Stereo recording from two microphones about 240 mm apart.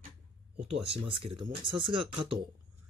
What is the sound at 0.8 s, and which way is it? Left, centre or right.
Speech, right.